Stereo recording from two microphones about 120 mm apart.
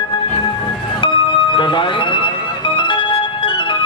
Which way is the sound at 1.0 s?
50° left (ahead or behind).